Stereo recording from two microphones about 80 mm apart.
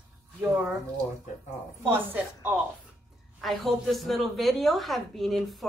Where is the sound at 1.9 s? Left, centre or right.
Right.